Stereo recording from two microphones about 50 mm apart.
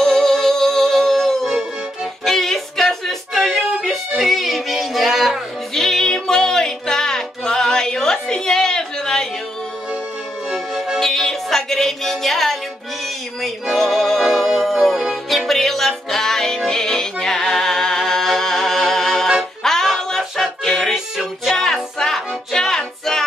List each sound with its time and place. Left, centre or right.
0.0 s music: centre
10.5 s music: centre
13.7 s music: centre